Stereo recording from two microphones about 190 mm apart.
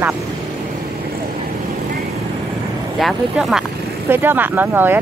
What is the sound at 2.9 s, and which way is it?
Speech, centre (ahead or behind).